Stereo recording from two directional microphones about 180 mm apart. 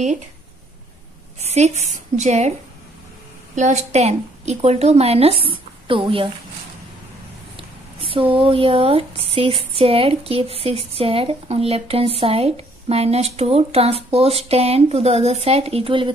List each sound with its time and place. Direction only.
1.4 s speech: 40° right (ahead or behind)
3.5 s speech: 40° right (ahead or behind)
7.5 s speech: 30° right (ahead or behind)